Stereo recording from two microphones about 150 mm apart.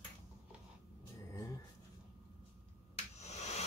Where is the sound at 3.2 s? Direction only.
50° left (ahead or behind).